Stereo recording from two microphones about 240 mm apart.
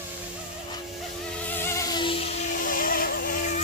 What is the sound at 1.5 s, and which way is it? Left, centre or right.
Music, centre.